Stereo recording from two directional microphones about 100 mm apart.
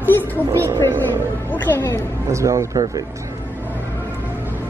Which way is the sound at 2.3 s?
30° right (ahead or behind).